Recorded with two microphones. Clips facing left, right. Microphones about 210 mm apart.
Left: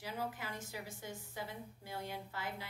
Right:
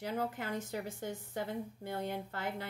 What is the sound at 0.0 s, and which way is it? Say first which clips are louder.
A woman's voice: right 6 dB; 60° right (ahead or behind).